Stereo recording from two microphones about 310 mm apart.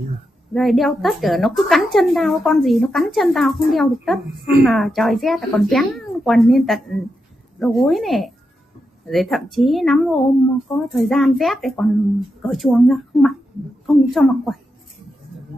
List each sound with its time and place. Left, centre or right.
0.5 s a woman's voice: centre